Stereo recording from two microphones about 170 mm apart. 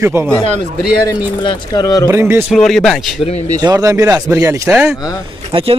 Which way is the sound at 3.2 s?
35° left (ahead or behind).